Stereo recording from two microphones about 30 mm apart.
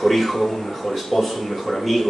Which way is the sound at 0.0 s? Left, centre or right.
Centre.